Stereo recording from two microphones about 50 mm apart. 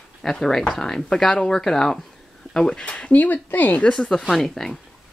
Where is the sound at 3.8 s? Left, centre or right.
Centre.